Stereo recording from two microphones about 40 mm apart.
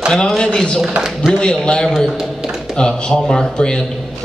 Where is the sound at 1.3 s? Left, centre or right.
Left.